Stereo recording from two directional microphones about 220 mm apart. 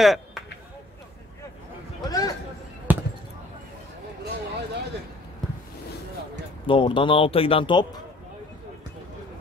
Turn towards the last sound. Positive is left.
turn(degrees=20)  # may be behind; listen again after turning